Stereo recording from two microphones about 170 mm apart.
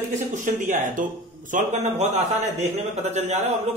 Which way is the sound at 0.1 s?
45° right (ahead or behind).